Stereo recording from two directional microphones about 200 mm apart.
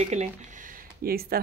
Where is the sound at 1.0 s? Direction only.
50° right (ahead or behind).